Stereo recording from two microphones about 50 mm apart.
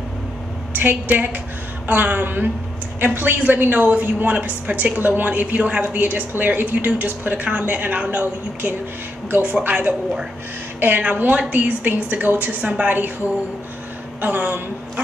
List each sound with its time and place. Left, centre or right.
0.7 s a woman's voice: right
14.2 s a woman's voice: right